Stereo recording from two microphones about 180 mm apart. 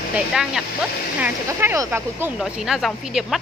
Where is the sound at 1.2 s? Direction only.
15° right (ahead or behind).